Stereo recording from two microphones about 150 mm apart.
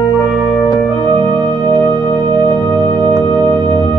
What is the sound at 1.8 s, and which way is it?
Music, 35° right (ahead or behind).